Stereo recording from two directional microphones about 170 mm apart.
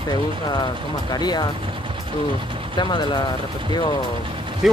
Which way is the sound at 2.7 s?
25° left (ahead or behind).